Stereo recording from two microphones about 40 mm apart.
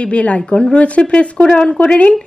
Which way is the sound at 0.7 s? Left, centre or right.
Left.